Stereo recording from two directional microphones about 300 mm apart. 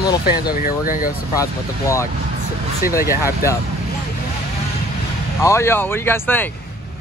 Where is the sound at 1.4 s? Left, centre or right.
Centre.